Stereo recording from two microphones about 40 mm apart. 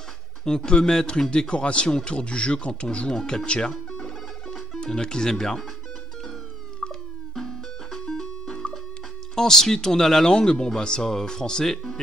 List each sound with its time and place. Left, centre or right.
0.5 s speech: centre
3.7 s music: centre
4.7 s speech: left
6.9 s music: centre
8.6 s music: left
9.3 s speech: centre